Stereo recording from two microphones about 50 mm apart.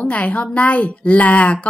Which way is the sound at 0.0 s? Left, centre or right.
Left.